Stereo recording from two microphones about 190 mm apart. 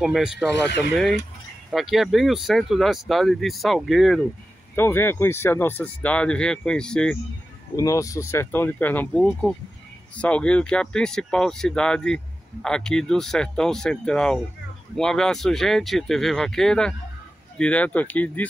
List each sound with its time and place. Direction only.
0.0 s speech: 5° right (ahead or behind)
4.7 s speech: 10° left (ahead or behind)
7.7 s speech: 15° left (ahead or behind)